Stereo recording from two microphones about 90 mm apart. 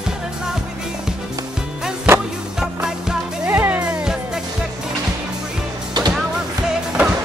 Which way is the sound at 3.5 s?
20° right (ahead or behind).